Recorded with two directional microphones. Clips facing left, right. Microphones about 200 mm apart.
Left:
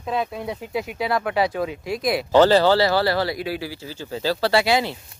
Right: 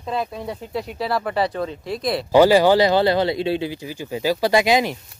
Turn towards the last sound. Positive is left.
turn(degrees=-15)  # may be behind; listen again after turning